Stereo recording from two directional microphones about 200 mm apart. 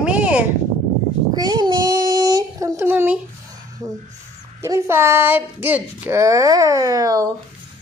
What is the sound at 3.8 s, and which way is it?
Speech, 15° right (ahead or behind).